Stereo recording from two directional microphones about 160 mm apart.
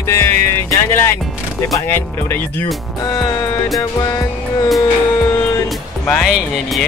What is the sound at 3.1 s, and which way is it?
Music, 25° left (ahead or behind).